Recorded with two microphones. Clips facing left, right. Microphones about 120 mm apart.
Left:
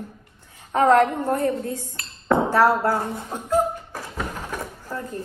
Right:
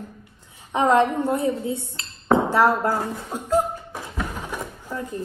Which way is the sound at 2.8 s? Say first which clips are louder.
Left 1 dB; 15° right (ahead or behind).